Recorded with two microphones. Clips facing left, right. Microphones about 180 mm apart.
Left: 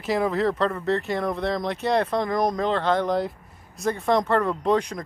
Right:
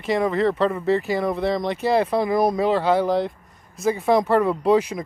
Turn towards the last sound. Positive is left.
turn(degrees=-5)  # may be behind; listen again after turning